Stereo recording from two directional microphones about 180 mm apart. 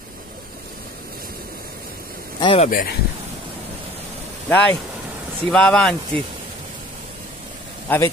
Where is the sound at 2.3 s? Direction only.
25° left (ahead or behind).